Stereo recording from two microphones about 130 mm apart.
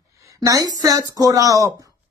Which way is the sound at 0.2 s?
25° right (ahead or behind).